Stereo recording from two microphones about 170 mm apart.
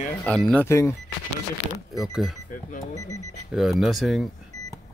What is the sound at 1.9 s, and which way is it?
Speech, centre (ahead or behind).